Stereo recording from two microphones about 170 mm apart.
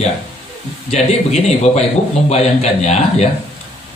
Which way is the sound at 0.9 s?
40° left (ahead or behind).